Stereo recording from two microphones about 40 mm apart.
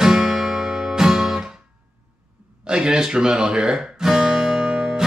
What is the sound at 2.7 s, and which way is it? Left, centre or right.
Guitar, right.